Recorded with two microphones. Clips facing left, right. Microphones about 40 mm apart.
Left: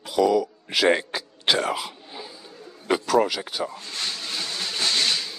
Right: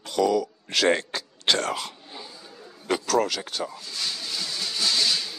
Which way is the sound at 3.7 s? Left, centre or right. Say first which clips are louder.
Left 1 dB; left.